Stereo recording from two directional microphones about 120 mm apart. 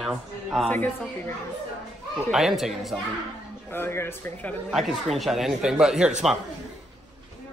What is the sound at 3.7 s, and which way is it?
Speech, 20° left (ahead or behind).